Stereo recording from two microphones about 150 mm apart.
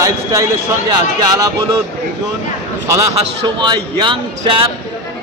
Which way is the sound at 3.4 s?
30° right (ahead or behind).